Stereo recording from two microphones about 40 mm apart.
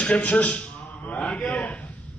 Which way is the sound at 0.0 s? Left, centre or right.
Left.